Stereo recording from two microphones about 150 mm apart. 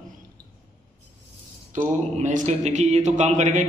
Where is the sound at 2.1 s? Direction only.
50° right (ahead or behind).